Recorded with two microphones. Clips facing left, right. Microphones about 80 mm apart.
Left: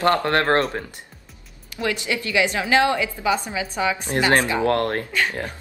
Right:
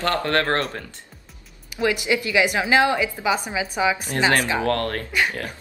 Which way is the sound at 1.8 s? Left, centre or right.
Centre.